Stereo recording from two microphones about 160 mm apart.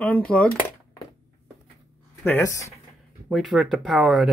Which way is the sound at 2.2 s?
15° left (ahead or behind).